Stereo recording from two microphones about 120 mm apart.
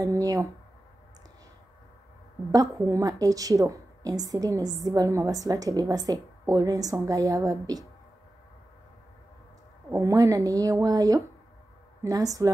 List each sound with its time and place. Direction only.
0.0 s speech: 30° right (ahead or behind)
2.5 s a woman's voice: 30° right (ahead or behind)
9.8 s a woman's voice: 25° right (ahead or behind)